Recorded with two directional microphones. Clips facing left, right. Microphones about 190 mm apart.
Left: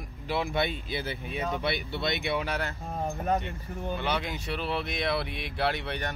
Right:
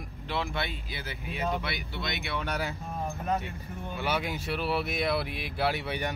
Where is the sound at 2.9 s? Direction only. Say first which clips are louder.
Left 5 dB; 35° left (ahead or behind).